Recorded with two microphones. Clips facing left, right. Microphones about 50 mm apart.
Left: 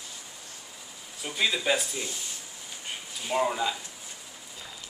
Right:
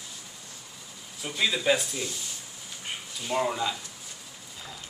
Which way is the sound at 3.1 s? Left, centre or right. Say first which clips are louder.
Left 1 dB; centre.